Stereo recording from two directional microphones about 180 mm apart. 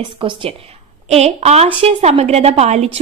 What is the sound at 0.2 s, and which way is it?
A woman's voice, 30° right (ahead or behind).